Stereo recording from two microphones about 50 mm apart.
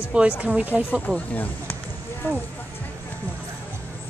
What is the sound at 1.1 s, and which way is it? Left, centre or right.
Speech, left.